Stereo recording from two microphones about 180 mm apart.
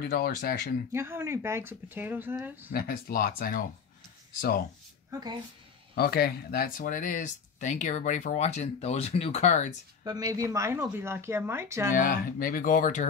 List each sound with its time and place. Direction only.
0.0 s speech: 55° left (ahead or behind)
0.9 s speech: 15° right (ahead or behind)
2.7 s speech: 55° left (ahead or behind)
5.9 s speech: 60° left (ahead or behind); by 9.7 s 40° left (ahead or behind)
10.0 s speech: 20° right (ahead or behind)
11.9 s speech: 50° left (ahead or behind)